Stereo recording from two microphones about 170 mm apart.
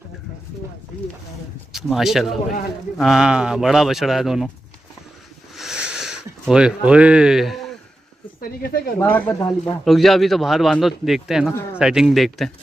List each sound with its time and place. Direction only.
2.0 s a man's voice: centre (ahead or behind)
5.6 s a sound: 5° right (ahead or behind)
8.4 s speech: 60° left (ahead or behind)
9.0 s speech: 10° left (ahead or behind)
9.8 s a man's voice: centre (ahead or behind)